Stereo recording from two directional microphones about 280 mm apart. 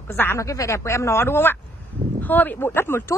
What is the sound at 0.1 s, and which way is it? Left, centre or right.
Speech, centre.